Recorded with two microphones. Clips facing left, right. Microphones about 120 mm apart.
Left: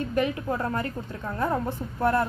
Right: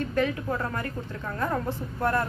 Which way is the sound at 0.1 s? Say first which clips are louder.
Left 2 dB; 20° left (ahead or behind).